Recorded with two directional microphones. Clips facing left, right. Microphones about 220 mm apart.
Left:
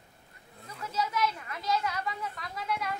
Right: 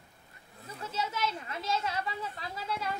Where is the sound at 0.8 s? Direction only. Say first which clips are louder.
Left 3 dB; 30° right (ahead or behind).